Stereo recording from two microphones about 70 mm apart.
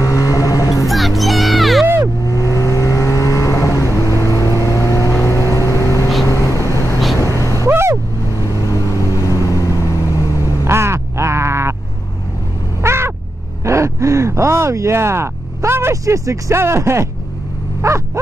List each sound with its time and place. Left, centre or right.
0.0 s vehicle: left
0.8 s music: centre
2.2 s vehicle: left
7.6 s vehicle: right
8.6 s vehicle: left
10.6 s crow: right
12.8 s a sound: right
13.7 s vehicle: right